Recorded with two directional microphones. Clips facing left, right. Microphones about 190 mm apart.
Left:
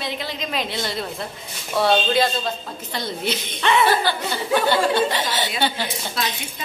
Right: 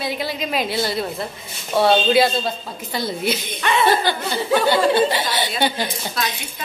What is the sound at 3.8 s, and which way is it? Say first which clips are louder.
A woman's voice: right 1 dB; 15° right (ahead or behind).